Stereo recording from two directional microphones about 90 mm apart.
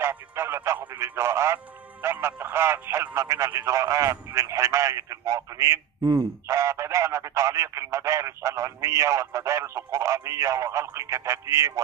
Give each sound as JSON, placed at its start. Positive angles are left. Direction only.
{"t": 0.0, "sound": "speech", "side_deg": -30}